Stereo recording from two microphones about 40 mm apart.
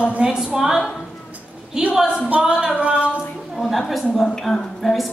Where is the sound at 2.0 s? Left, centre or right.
Centre.